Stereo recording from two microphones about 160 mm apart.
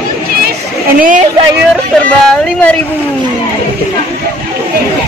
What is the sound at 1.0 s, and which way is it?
Speech, 55° right (ahead or behind).